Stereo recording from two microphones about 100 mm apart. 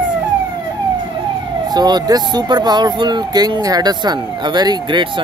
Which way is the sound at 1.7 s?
45° right (ahead or behind).